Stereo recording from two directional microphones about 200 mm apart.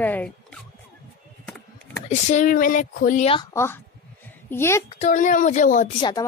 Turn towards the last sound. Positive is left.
turn(degrees=20)  # may be behind; listen again after turning